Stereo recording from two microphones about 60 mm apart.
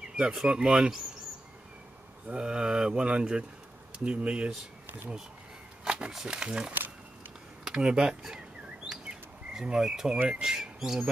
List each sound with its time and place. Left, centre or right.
0.1 s a sound: centre
0.5 s speech: centre
2.2 s speech: centre
5.9 s speech: centre
8.8 s bird: centre
10.2 s speech: centre